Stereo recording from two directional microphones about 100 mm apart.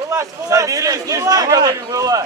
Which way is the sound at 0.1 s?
30° right (ahead or behind).